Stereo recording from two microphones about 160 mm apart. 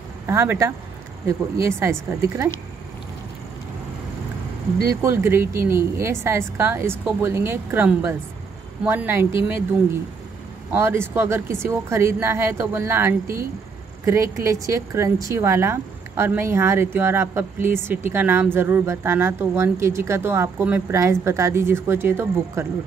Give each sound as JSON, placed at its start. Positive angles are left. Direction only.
{"t": 0.3, "sound": "a woman's voice", "side_deg": -15}
{"t": 1.8, "sound": "a woman's voice", "side_deg": -15}
{"t": 4.8, "sound": "a woman's voice", "side_deg": -15}
{"t": 10.7, "sound": "a woman's voice", "side_deg": -15}